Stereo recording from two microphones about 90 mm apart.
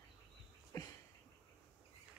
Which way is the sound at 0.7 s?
45° left (ahead or behind).